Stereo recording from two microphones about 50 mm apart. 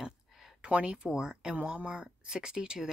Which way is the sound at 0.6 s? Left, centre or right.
Right.